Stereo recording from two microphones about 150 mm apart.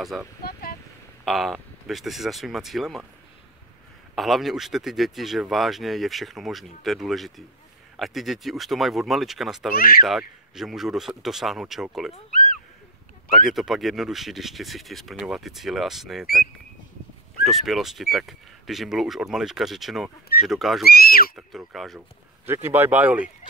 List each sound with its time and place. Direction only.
0.0 s speech: centre (ahead or behind)
0.4 s speech: 90° left
1.2 s speech: centre (ahead or behind)
4.1 s speech: centre (ahead or behind)
12.3 s a sound: 65° left (ahead or behind)
13.3 s speech: centre (ahead or behind)
20.8 s speech: 90° left
21.4 s speech: centre (ahead or behind)
22.5 s speech: 15° right (ahead or behind)